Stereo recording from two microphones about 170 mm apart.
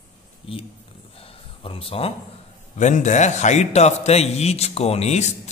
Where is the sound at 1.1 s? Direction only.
35° left (ahead or behind).